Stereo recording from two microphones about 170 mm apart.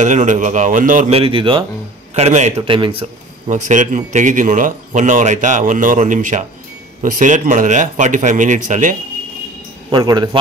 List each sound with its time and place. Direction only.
0.0 s speech: 45° right (ahead or behind)
1.1 s speech: 30° right (ahead or behind)
2.1 s speech: 40° right (ahead or behind)
2.6 s speech: 30° right (ahead or behind)
3.4 s speech: 45° right (ahead or behind)
9.8 s a man's voice: 25° right (ahead or behind)